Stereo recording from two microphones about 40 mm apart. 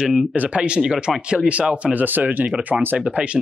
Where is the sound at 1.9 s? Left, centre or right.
Right.